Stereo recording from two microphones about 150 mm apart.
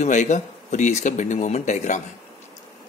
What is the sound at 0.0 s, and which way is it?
Speech, 55° left (ahead or behind).